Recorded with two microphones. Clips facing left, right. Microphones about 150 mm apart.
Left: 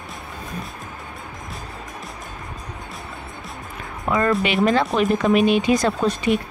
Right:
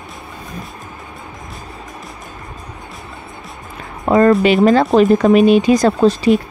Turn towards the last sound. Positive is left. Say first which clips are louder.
# right 7 dB
turn(degrees=-35)  # may be behind; listen again after turning